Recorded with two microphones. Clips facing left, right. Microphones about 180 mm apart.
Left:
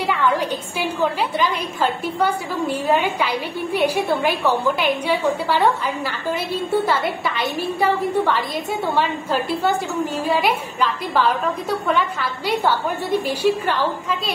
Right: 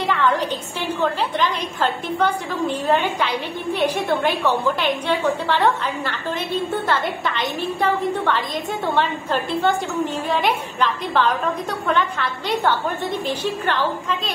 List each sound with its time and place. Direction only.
0.7 s a woman's voice: 10° left (ahead or behind)